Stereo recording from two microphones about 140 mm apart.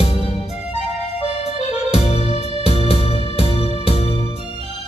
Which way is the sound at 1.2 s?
45° left (ahead or behind).